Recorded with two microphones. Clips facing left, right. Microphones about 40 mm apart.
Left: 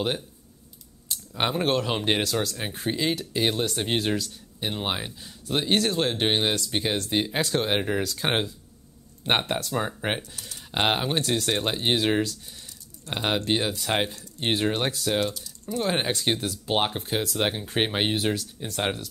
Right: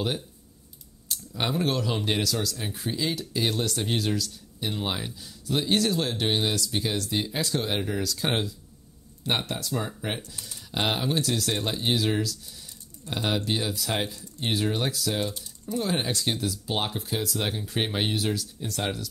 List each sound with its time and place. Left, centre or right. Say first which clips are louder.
1.3 s speech: left 3 dB; left
10.7 s speech: left 2 dB; left